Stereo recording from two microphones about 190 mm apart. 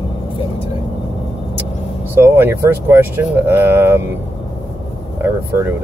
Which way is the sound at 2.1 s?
10° right (ahead or behind).